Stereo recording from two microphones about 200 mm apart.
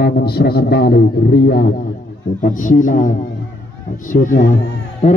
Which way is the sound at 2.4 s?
40° left (ahead or behind).